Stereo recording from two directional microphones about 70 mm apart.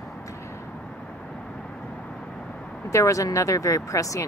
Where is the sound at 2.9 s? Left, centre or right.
Left.